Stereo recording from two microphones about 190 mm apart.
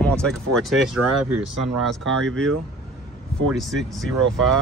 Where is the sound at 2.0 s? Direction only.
90° right.